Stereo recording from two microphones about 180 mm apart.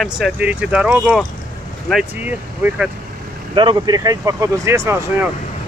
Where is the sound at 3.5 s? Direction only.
25° right (ahead or behind).